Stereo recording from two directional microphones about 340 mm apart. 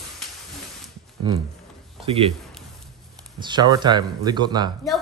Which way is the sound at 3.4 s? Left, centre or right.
Centre.